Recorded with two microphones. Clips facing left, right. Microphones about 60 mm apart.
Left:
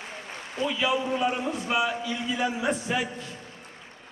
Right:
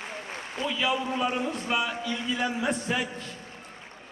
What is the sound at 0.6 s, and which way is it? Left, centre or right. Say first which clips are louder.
A man's voice: left 2 dB; centre.